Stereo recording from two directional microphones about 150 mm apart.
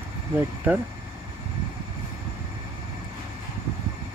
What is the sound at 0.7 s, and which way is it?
Speech, 10° right (ahead or behind).